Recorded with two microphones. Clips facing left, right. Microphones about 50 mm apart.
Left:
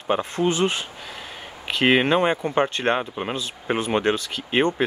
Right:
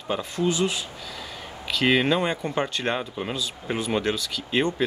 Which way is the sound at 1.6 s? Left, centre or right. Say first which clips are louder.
Left 3 dB; left.